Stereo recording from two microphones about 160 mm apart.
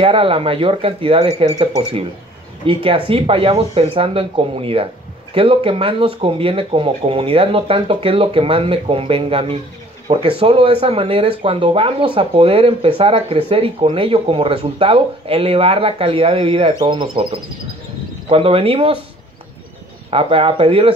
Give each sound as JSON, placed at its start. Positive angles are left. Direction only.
{"t": 0.0, "sound": "speech", "side_deg": -35}
{"t": 20.1, "sound": "speech", "side_deg": -35}